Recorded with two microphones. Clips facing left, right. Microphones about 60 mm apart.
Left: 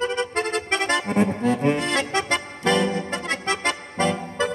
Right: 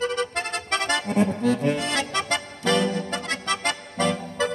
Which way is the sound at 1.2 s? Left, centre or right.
Left.